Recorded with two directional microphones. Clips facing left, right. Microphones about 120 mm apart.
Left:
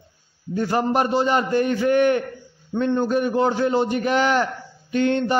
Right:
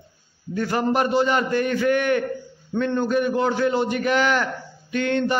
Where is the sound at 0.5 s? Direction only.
30° left (ahead or behind).